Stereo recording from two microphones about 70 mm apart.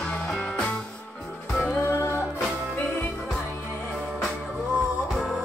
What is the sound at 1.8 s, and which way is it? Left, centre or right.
Music, left.